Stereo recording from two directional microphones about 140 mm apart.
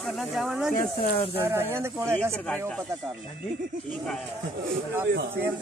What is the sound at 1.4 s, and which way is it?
Speech, 15° right (ahead or behind).